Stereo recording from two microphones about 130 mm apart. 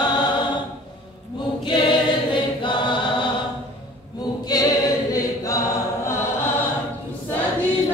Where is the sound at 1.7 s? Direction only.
40° left (ahead or behind).